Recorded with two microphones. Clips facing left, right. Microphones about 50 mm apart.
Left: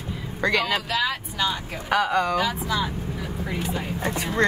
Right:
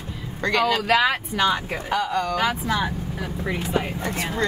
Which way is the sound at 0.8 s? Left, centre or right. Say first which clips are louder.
Right 6 dB; right.